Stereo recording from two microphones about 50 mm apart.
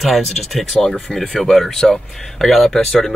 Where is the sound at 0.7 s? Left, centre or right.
Centre.